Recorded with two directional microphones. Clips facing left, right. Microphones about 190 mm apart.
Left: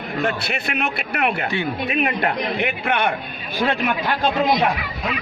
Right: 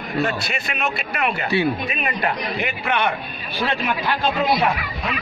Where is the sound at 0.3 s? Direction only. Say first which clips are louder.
Left 2 dB; 60° left (ahead or behind).